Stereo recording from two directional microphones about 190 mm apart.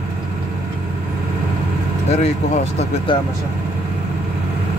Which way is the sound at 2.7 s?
25° left (ahead or behind).